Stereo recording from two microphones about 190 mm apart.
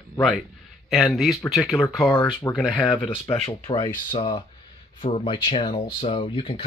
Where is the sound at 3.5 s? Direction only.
20° left (ahead or behind).